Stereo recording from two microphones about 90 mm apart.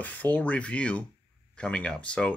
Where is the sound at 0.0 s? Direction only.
20° left (ahead or behind).